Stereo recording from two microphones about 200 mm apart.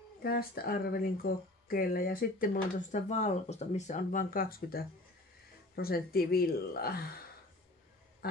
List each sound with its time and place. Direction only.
0.2 s speech: 50° left (ahead or behind)